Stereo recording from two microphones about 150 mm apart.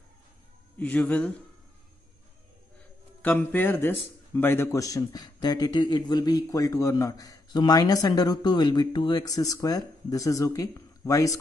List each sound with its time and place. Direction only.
0.7 s a man's voice: 10° left (ahead or behind)
3.2 s a man's voice: 10° left (ahead or behind)